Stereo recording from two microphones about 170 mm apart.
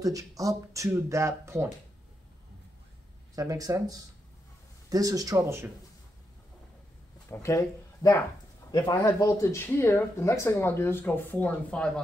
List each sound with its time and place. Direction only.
0.0 s speech: 20° right (ahead or behind)
3.3 s speech: 20° right (ahead or behind)
7.2 s speech: 20° left (ahead or behind)